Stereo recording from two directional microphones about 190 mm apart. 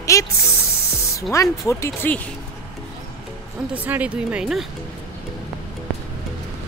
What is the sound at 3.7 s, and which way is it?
Speech, 10° right (ahead or behind).